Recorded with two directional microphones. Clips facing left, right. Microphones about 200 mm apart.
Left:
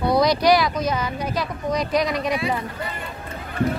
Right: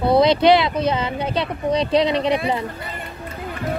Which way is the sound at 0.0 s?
25° right (ahead or behind).